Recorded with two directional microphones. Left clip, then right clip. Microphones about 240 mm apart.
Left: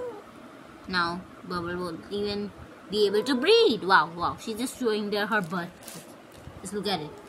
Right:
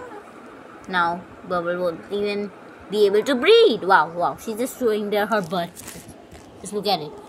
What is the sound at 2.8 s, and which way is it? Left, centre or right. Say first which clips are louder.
Speech: right 6 dB; right.